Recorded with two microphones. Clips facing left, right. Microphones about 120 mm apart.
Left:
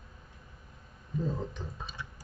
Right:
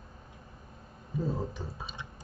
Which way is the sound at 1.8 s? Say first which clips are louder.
Even; 20° right (ahead or behind).